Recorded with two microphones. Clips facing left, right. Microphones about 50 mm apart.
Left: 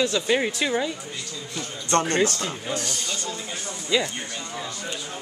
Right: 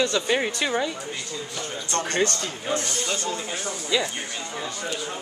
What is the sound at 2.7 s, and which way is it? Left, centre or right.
Speech, right.